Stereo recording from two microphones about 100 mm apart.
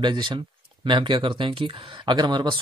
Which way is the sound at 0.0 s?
50° right (ahead or behind).